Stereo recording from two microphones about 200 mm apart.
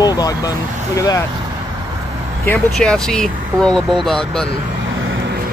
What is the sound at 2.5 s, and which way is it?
Speech, 5° left (ahead or behind).